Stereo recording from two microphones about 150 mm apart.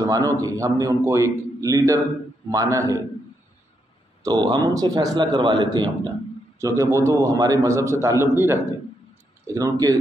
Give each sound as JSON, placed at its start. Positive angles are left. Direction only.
{"t": 0.4, "sound": "a man's voice", "side_deg": -25}
{"t": 4.2, "sound": "a man's voice", "side_deg": -30}